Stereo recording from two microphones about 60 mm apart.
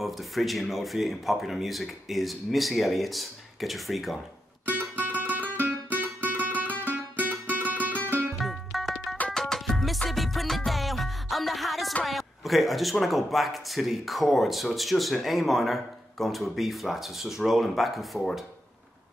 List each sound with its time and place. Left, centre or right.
0.0 s speech: centre
5.0 s music: right
8.4 s music: centre
12.0 s speech: centre